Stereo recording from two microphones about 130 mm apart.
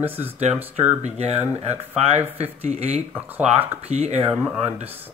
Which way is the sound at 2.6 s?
55° right (ahead or behind).